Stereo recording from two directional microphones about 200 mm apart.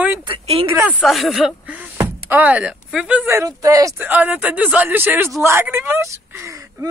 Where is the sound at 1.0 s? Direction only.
Centre (ahead or behind).